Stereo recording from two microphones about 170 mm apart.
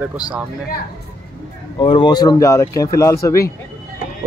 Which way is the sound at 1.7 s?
30° left (ahead or behind).